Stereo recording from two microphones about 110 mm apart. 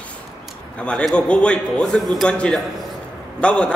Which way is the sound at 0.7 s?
10° left (ahead or behind).